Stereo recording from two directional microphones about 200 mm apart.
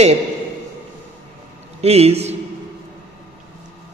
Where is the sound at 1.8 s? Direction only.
30° right (ahead or behind).